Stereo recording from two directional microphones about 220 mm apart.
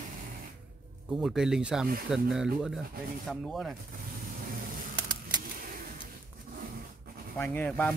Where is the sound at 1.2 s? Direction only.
5° right (ahead or behind).